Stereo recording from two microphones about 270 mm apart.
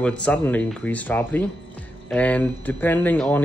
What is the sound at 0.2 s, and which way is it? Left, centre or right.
Speech, centre.